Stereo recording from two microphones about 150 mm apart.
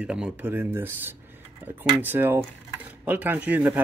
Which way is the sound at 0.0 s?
5° right (ahead or behind).